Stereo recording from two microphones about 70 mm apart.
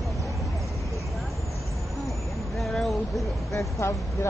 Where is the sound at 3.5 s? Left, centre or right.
Left.